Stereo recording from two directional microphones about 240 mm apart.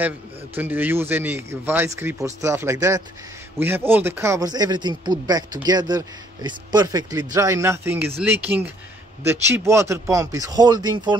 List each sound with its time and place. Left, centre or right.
0.6 s a man's voice: centre